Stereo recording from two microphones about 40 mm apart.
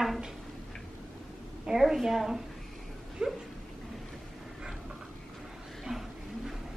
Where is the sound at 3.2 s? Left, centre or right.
Centre.